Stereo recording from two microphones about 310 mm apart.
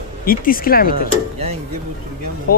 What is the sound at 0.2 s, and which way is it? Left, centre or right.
Speech, left.